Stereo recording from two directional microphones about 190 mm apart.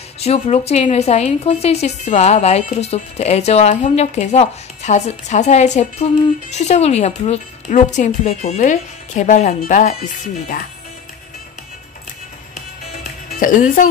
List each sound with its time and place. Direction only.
0.2 s a woman's voice: 35° left (ahead or behind)
13.0 s music: 45° left (ahead or behind)